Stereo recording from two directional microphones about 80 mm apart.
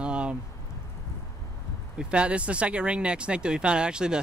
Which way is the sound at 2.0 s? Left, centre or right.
Centre.